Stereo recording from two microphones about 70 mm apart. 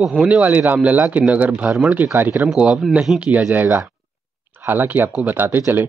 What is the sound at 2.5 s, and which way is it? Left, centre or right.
Speech, centre.